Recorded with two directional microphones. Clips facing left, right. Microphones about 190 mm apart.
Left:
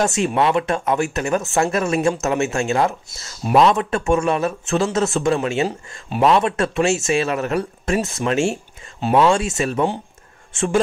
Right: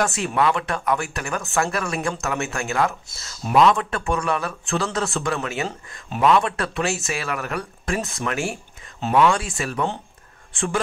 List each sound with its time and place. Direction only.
0.0 s speech: 20° left (ahead or behind)